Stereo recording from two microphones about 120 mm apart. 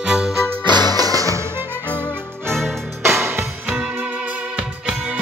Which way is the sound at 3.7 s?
10° right (ahead or behind).